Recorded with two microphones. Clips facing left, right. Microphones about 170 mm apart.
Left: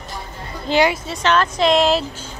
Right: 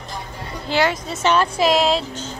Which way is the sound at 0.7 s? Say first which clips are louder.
Left 3 dB; 20° left (ahead or behind).